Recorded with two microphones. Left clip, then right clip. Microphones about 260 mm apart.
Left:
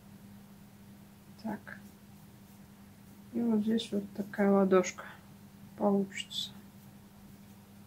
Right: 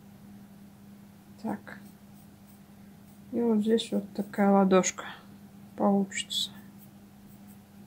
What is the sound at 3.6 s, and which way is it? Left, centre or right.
Speech, right.